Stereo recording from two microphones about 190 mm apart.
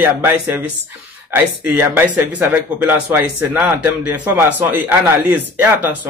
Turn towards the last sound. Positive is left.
turn(degrees=-10)  # may be behind; listen again after turning